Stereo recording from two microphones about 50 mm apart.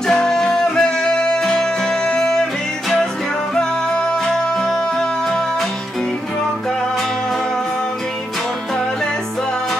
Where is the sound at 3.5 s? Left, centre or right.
Centre.